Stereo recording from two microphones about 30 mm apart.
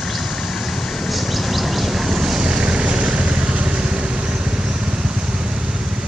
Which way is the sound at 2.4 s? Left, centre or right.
Right.